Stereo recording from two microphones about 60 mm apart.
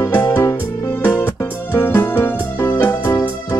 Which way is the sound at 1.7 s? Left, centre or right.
Left.